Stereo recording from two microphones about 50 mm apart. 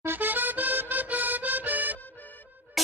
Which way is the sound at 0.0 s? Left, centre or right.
Right.